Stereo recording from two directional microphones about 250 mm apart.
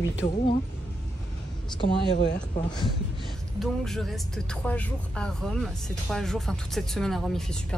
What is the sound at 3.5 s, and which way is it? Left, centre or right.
Speech, centre.